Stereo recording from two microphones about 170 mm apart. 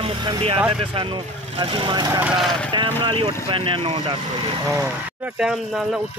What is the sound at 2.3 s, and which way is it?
Speech, 5° left (ahead or behind).